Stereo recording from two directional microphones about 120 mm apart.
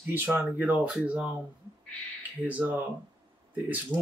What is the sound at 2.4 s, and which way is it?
Speech, 15° right (ahead or behind).